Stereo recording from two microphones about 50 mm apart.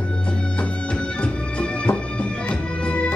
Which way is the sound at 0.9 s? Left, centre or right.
Left.